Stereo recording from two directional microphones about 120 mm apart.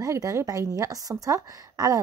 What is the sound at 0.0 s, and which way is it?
Speech, 25° right (ahead or behind).